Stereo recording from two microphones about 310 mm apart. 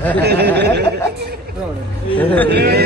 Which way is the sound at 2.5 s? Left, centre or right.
Right.